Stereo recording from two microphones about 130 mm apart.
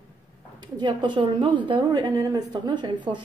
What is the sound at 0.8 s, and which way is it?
Speech, 35° right (ahead or behind).